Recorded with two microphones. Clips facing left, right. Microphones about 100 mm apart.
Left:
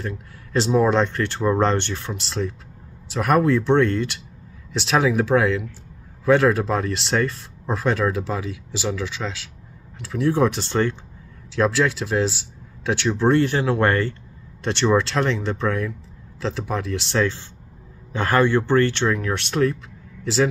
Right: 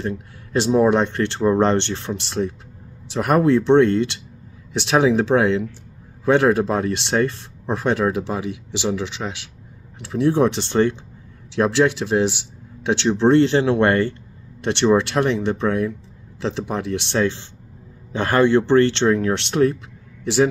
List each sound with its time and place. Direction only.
0.0 s speech: 25° right (ahead or behind)